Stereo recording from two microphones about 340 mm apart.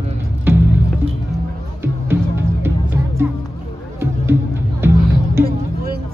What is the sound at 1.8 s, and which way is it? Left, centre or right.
Music, centre.